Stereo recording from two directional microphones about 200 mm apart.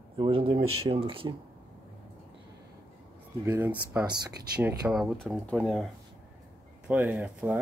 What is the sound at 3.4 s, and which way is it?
Speech, 10° right (ahead or behind).